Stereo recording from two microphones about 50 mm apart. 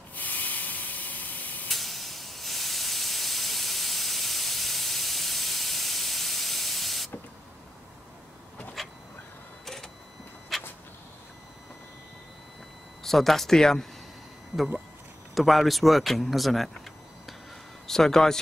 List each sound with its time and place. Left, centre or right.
0.1 s spray: left
1.7 s steam: centre
8.8 s a sound: centre
10.5 s vehicle: centre
13.0 s speech: centre
15.3 s speech: centre
17.8 s a man's voice: centre